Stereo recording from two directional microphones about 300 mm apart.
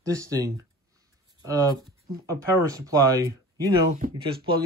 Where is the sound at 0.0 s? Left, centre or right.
Centre.